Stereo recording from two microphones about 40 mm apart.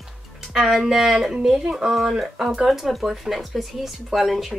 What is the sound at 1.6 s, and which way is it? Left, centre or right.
Speech, centre.